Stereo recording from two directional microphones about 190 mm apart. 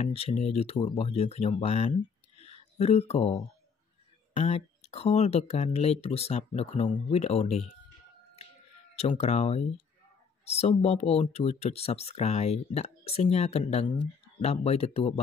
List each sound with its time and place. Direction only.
0.0 s speech: 35° left (ahead or behind)
8.9 s speech: 35° left (ahead or behind)